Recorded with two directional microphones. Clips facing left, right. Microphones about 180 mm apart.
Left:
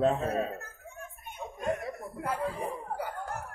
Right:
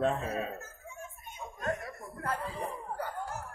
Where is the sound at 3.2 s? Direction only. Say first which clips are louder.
Left 2 dB; 60° left (ahead or behind).